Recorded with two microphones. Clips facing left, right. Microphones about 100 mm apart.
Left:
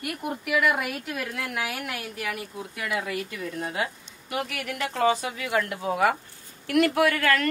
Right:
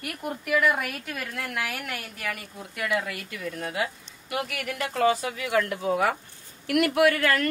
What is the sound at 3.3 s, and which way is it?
A woman's voice, 30° left (ahead or behind).